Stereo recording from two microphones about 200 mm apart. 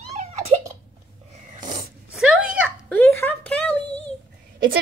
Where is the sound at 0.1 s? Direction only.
30° right (ahead or behind).